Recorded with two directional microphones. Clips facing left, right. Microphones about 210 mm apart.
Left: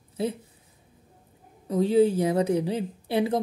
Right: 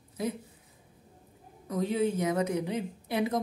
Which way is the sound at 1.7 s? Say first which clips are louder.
Left 8 dB; 30° left (ahead or behind).